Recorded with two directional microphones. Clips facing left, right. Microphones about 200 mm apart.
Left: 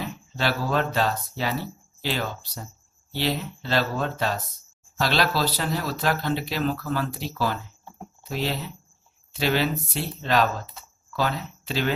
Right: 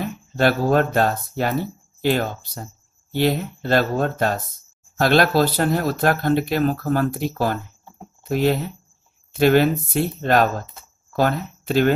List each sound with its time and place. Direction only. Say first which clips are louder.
0.0 s speech: right 8 dB; 50° right (ahead or behind)